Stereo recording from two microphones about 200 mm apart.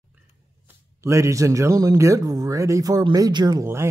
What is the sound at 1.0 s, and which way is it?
Speech, 15° right (ahead or behind).